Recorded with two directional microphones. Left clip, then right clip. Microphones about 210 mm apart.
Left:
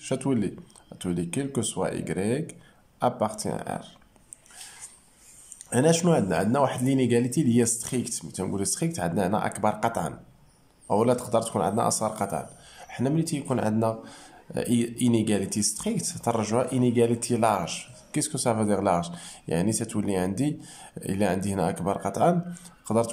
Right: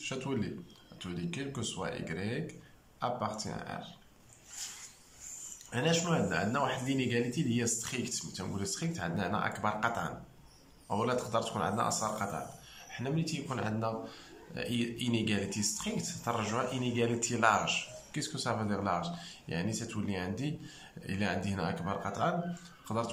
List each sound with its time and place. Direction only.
0.0 s speech: 35° left (ahead or behind)
5.7 s speech: 30° left (ahead or behind)